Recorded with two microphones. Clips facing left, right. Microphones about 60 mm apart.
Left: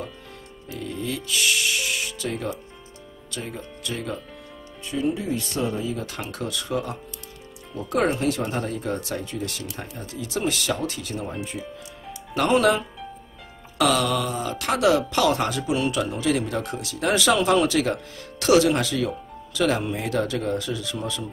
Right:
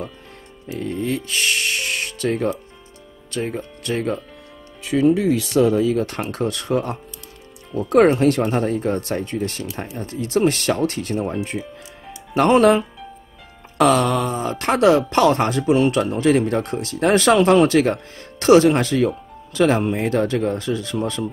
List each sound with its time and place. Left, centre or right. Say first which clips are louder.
0.7 s speech: right 6 dB; right
4.8 s speech: right 9 dB; right
5.9 s speech: right 9 dB; right
12.4 s speech: right 6 dB; right